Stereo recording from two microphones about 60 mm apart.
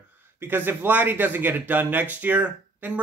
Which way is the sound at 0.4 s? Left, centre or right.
Right.